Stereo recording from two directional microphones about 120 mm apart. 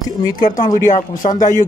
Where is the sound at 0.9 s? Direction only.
90° left.